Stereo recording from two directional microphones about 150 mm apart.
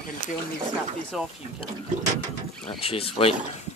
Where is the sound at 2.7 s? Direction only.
40° left (ahead or behind).